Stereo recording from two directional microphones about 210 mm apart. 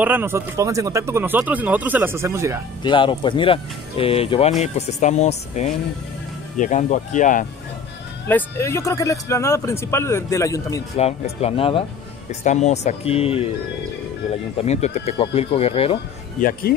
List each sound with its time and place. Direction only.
0.0 s speech: 10° right (ahead or behind)
2.8 s speech: 25° left (ahead or behind)
8.3 s speech: 10° left (ahead or behind)
11.0 s speech: 30° left (ahead or behind)
14.6 s speech: 30° left (ahead or behind)
16.3 s speech: 40° left (ahead or behind)